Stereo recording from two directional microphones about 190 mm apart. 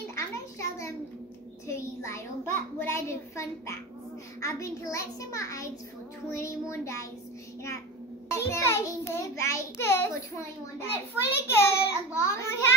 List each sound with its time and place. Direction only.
0.1 s a sound: 15° left (ahead or behind)
4.4 s a child's voice: 15° left (ahead or behind)
8.3 s a child's voice: 15° left (ahead or behind)
11.4 s a child's voice: 15° left (ahead or behind)